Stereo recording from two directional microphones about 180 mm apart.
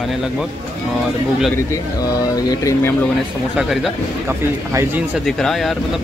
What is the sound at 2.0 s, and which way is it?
Speech, 20° left (ahead or behind).